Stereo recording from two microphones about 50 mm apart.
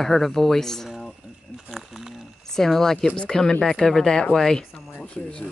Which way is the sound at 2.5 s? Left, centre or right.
Centre.